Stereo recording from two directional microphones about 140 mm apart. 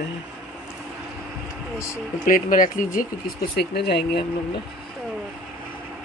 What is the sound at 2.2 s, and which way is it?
Speech, 80° left.